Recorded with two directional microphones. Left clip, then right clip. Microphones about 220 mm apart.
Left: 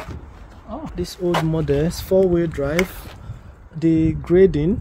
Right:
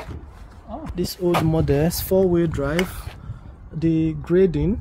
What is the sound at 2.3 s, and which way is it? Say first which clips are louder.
Speech: left 1 dB; 10° right (ahead or behind).